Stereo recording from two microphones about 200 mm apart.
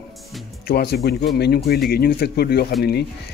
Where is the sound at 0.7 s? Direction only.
50° left (ahead or behind).